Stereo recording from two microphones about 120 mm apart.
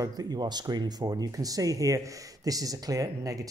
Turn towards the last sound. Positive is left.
turn(degrees=-30)  # may be behind; listen again after turning